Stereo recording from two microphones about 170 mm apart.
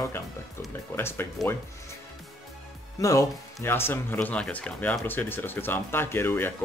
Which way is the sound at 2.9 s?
20° left (ahead or behind).